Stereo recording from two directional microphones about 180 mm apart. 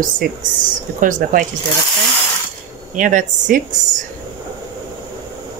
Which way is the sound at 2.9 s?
45° right (ahead or behind).